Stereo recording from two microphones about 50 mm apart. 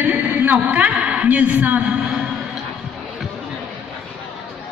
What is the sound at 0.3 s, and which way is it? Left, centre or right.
A woman's voice, right.